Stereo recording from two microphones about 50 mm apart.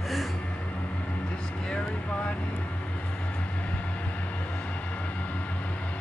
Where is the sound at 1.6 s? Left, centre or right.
Centre.